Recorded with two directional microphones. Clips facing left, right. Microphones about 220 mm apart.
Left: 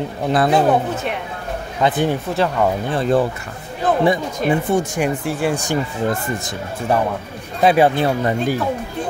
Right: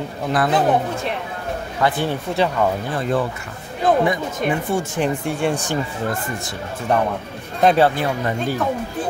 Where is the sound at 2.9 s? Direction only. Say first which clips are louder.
Left 4 dB; 30° left (ahead or behind).